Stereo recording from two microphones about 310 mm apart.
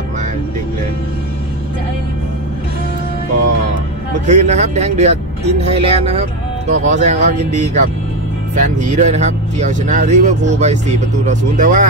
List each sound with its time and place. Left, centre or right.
4.3 s speech: right